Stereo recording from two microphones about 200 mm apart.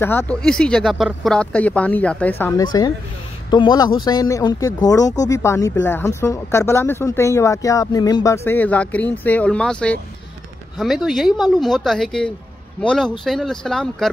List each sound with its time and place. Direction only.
0.0 s speech: 10° left (ahead or behind)
2.6 s speech: 20° left (ahead or behind); by 14.1 s centre (ahead or behind)